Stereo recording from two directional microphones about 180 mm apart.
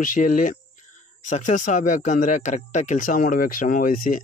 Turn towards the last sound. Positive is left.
turn(degrees=50)  # may be behind; listen again after turning